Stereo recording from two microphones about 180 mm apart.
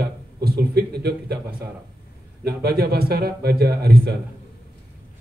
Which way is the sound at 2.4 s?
60° right (ahead or behind).